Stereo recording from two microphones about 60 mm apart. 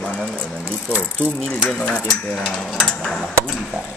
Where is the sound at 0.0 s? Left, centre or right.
Centre.